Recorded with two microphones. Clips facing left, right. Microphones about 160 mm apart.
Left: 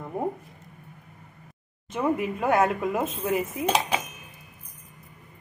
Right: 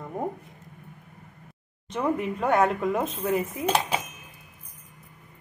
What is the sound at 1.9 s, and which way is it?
Speech, 5° left (ahead or behind).